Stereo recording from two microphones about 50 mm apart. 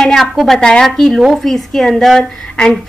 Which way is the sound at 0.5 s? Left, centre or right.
Centre.